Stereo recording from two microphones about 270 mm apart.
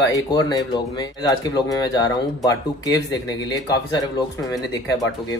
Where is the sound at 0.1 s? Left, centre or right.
Centre.